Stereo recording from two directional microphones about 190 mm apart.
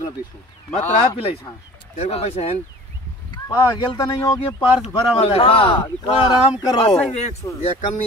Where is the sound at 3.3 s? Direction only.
20° left (ahead or behind).